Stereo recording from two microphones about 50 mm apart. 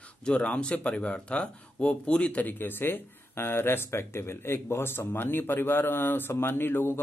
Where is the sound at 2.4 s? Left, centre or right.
Left.